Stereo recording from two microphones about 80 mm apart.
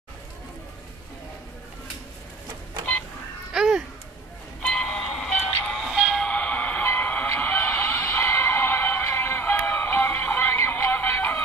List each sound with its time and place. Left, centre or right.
3.5 s babbling: centre
4.6 s music: centre
5.8 s music: centre
6.1 s a sound: centre; by 11.4 s left